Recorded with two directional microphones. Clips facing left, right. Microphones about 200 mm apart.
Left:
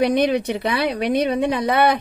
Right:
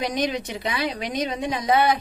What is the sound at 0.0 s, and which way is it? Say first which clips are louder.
A woman's voice: left 8 dB; 60° left (ahead or behind).